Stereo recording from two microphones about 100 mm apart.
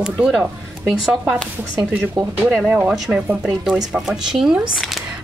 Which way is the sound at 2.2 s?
5° right (ahead or behind).